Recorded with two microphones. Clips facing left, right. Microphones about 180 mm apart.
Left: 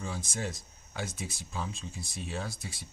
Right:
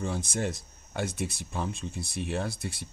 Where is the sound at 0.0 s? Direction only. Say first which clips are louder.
Right 6 dB; 60° right (ahead or behind).